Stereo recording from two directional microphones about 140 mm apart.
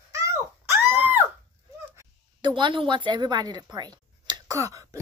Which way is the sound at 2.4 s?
35° right (ahead or behind).